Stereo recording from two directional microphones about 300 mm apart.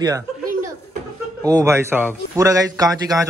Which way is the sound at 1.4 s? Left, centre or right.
Centre.